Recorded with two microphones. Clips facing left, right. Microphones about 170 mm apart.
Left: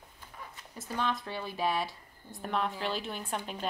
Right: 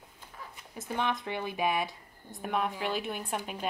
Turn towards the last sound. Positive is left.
turn(degrees=-10)  # may be behind; listen again after turning